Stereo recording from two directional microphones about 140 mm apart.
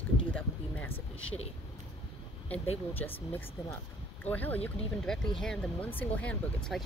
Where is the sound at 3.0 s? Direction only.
15° left (ahead or behind).